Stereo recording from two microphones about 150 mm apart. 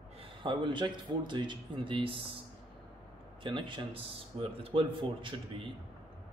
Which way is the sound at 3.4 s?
35° right (ahead or behind).